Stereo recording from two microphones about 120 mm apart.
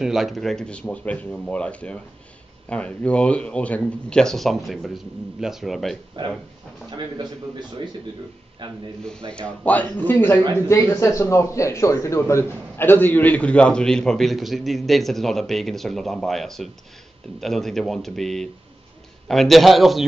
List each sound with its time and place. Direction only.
0.0 s a man's voice: 5° right (ahead or behind)
6.2 s speech: 40° right (ahead or behind)
9.3 s a man's voice: 10° left (ahead or behind)